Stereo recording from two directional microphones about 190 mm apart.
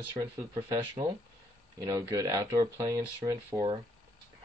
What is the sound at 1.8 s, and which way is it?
Speech, 15° right (ahead or behind).